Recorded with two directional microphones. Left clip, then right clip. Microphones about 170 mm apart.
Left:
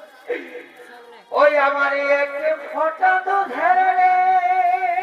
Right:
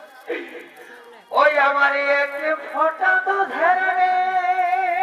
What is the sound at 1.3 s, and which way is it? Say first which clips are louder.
Music: even; 20° right (ahead or behind).